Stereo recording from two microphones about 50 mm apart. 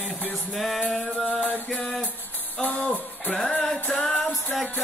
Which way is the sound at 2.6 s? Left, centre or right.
Left.